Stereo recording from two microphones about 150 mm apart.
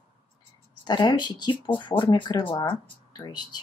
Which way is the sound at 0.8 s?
30° left (ahead or behind).